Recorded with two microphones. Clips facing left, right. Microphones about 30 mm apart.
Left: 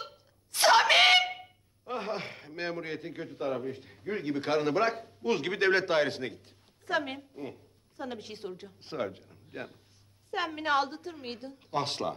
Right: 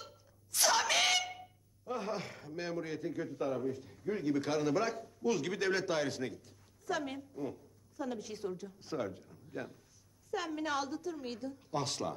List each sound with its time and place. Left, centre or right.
0.0 s speech: left
9.3 s a sound: left
10.3 s a woman's voice: left